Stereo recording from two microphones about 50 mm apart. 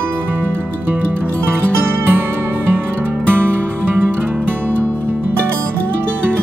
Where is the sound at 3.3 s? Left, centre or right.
Right.